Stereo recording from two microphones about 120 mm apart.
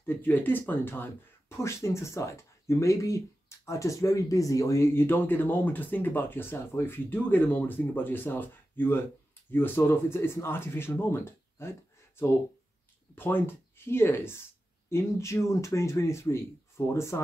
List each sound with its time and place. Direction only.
0.0 s speech: 15° left (ahead or behind)
13.1 s speech: 15° left (ahead or behind)